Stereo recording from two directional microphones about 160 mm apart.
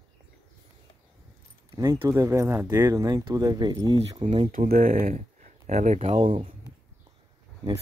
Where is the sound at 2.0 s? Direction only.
20° right (ahead or behind).